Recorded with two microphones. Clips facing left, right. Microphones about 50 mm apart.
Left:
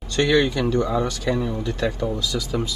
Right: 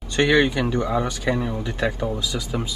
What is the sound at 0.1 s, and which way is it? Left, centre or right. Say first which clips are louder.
Speech: right 1 dB; right.